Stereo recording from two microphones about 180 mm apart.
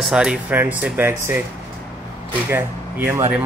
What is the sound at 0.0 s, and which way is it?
Speech, 5° right (ahead or behind).